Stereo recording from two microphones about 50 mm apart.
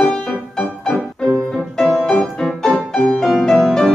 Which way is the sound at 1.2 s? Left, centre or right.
Centre.